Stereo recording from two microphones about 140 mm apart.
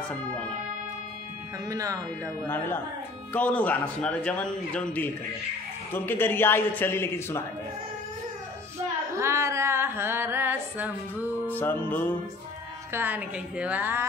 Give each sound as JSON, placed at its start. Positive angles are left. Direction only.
{"t": 1.7, "sound": "speech", "side_deg": -25}
{"t": 2.4, "sound": "a man's voice", "side_deg": 15}
{"t": 9.1, "sound": "music", "side_deg": -20}
{"t": 11.4, "sound": "a man's voice", "side_deg": 15}
{"t": 12.9, "sound": "music", "side_deg": -15}